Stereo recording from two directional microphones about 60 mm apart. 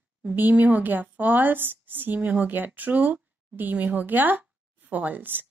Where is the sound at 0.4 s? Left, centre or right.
Right.